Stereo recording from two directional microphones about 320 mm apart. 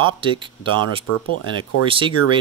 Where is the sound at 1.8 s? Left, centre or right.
Centre.